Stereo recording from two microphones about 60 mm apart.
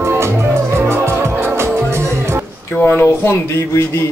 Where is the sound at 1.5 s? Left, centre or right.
Right.